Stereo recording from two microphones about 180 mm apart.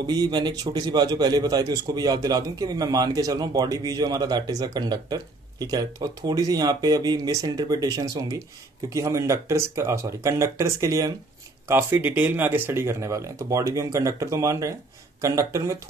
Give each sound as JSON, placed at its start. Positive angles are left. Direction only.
{"t": 0.0, "sound": "a man's voice", "side_deg": -20}